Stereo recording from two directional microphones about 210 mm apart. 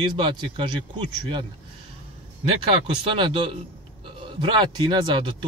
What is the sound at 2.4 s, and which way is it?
Speech, 25° right (ahead or behind).